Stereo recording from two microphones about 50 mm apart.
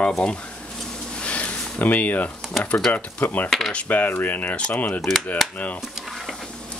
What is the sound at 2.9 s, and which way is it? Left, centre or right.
Speech, left.